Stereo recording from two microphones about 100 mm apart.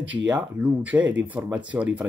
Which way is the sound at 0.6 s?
15° right (ahead or behind).